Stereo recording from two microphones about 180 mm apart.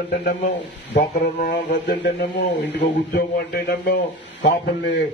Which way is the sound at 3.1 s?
60° left (ahead or behind).